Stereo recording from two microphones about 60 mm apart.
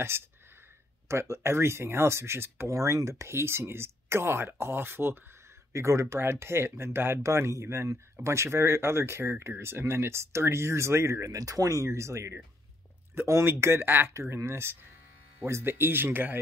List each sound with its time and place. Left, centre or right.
0.1 s speech: right
2.7 s speech: right
5.7 s speech: right
13.1 s speech: right